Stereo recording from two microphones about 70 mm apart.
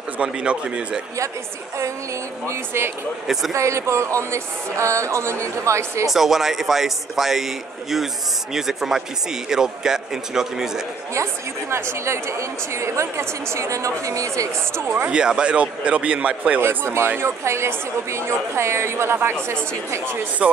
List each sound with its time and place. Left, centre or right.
0.2 s a man's voice: centre
2.4 s a woman's voice: right
6.0 s a man's voice: centre
11.7 s a woman's voice: right
15.0 s a man's voice: centre
16.6 s a woman's voice: right